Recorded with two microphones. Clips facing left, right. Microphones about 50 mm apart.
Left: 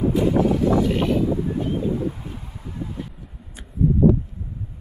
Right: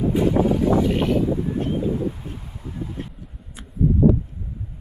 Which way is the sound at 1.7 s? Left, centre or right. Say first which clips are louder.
Even; centre.